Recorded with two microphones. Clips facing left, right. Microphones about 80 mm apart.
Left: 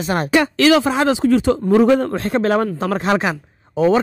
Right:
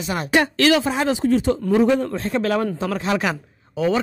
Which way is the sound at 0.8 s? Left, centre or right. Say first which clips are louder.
Left 4 dB; left.